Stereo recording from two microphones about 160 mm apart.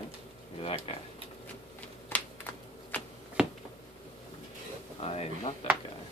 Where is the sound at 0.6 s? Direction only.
35° left (ahead or behind).